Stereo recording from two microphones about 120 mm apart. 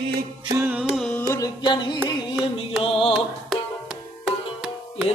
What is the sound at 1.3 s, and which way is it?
Music, 30° left (ahead or behind).